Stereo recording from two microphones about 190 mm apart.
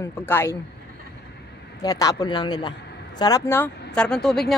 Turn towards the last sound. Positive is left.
turn(degrees=0)  # may be behind; listen again after turning